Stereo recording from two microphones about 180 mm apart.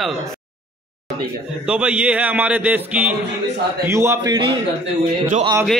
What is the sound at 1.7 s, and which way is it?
A man's voice, 5° right (ahead or behind).